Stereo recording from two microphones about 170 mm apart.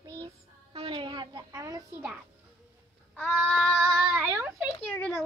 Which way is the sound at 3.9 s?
5° right (ahead or behind).